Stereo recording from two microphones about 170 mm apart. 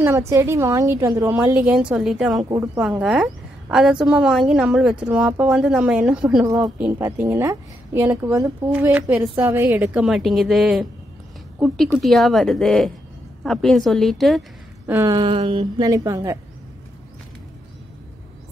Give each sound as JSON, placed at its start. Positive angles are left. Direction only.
{"t": 0.3, "sound": "a woman's voice", "side_deg": -15}
{"t": 2.5, "sound": "a woman's voice", "side_deg": -15}
{"t": 2.8, "sound": "a woman's voice", "side_deg": -5}
{"t": 6.4, "sound": "a woman's voice", "side_deg": -20}
{"t": 14.9, "sound": "a woman's voice", "side_deg": -15}
{"t": 15.1, "sound": "a woman's voice", "side_deg": -30}